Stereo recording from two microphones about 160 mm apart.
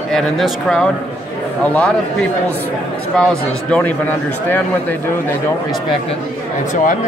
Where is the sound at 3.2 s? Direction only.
5° left (ahead or behind).